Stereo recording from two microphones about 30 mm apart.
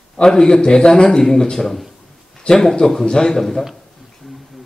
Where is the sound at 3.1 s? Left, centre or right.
Left.